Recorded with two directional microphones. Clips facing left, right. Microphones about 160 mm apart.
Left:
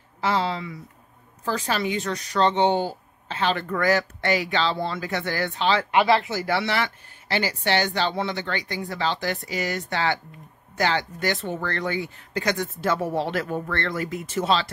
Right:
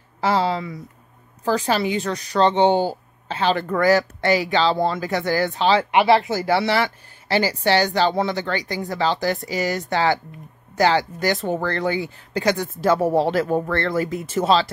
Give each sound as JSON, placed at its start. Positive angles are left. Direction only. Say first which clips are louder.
{"t": 0.2, "sound": "speech", "louder": "right 4 dB", "side_deg": -35}